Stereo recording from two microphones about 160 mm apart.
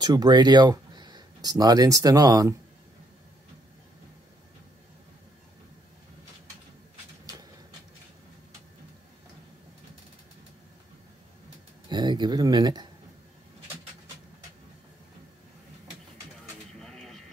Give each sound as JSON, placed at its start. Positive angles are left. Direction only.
{"t": 0.0, "sound": "speech", "side_deg": -25}
{"t": 11.9, "sound": "speech", "side_deg": -25}
{"t": 16.8, "sound": "a sound", "side_deg": 0}